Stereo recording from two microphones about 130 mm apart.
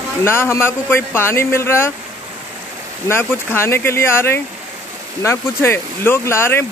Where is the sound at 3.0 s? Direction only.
20° left (ahead or behind).